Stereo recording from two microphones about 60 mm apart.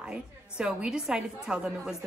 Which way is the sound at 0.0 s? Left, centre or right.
Centre.